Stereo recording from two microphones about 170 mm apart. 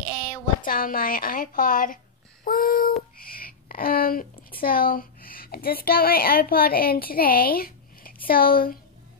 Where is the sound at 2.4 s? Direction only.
55° left (ahead or behind).